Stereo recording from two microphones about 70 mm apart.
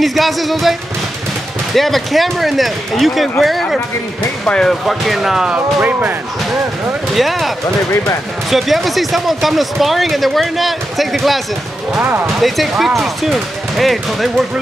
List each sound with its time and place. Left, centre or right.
0.0 s speech: centre
1.8 s speech: centre
4.8 s speech: centre
5.5 s speech: right
7.2 s speech: centre